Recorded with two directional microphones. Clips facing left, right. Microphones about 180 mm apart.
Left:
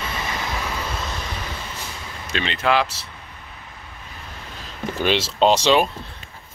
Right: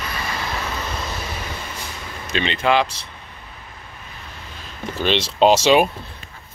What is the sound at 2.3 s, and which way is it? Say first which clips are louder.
Speech: right 2 dB; centre (ahead or behind).